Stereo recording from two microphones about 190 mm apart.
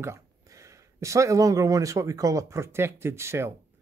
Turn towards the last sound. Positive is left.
turn(degrees=-15)  # may be behind; listen again after turning